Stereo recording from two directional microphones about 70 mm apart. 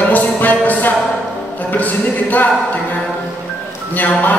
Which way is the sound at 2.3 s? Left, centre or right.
Left.